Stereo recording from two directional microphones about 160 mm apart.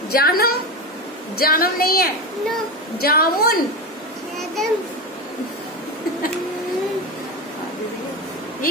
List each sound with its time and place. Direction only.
0.1 s a woman's voice: 70° left (ahead or behind)
4.6 s a child's voice: centre (ahead or behind)